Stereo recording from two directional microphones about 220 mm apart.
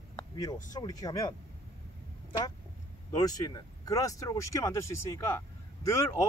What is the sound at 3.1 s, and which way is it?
Speech, 15° left (ahead or behind).